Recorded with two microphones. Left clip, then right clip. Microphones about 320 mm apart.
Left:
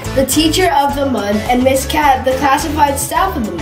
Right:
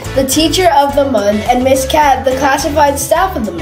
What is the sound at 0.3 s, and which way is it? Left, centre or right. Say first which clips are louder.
A woman's voice: right 4 dB; centre.